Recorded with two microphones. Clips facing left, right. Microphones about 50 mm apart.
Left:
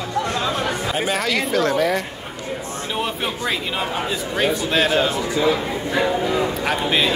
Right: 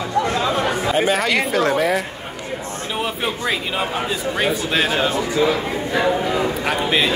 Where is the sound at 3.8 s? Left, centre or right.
Centre.